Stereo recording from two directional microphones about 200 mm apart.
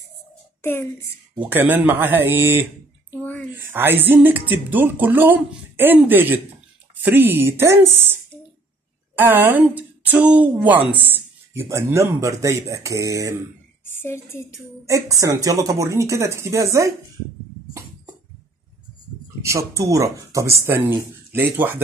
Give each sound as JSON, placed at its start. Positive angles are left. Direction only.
{"t": 0.6, "sound": "a child's voice", "side_deg": 10}
{"t": 1.4, "sound": "speech", "side_deg": -10}
{"t": 3.1, "sound": "a sound", "side_deg": 10}
{"t": 3.5, "sound": "speech", "side_deg": -10}
{"t": 13.9, "sound": "a woman's voice", "side_deg": 10}
{"t": 14.9, "sound": "speech", "side_deg": -15}
{"t": 19.4, "sound": "speech", "side_deg": -15}